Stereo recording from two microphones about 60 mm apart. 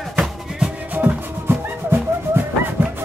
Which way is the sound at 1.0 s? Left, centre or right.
Right.